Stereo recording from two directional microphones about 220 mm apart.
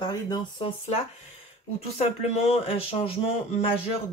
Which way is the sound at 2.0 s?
25° left (ahead or behind).